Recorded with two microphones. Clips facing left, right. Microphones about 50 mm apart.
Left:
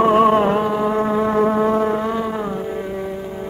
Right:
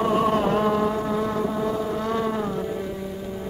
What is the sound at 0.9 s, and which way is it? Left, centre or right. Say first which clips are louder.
Music: left 7 dB; left.